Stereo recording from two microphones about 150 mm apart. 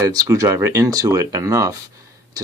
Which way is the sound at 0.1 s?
20° right (ahead or behind).